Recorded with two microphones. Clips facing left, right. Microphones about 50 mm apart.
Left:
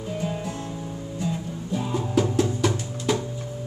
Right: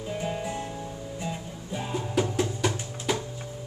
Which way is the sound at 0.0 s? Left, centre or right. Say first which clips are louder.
Left 2 dB; centre.